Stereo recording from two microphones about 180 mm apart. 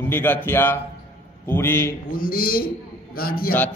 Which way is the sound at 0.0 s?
10° left (ahead or behind).